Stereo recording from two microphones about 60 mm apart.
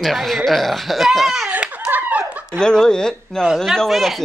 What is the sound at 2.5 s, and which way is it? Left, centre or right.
Speech, centre.